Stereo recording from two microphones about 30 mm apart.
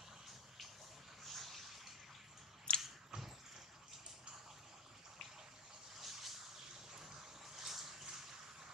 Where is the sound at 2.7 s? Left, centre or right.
Left.